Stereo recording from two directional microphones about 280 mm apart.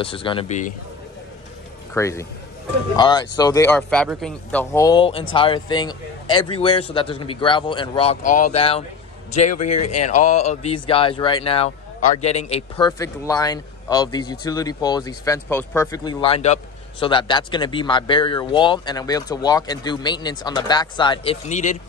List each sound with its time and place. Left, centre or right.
0.0 s speech: centre
2.0 s speech: centre; by 9.8 s left
9.8 s speech: left
10.0 s speech: left